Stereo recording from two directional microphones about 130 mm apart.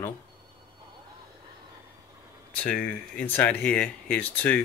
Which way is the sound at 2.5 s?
10° left (ahead or behind).